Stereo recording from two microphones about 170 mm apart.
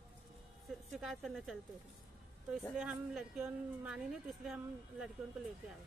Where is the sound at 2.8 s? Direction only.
5° right (ahead or behind).